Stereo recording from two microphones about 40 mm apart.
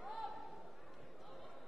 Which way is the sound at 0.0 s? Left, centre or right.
Centre.